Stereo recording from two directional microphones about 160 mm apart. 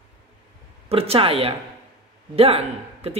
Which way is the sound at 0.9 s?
35° right (ahead or behind).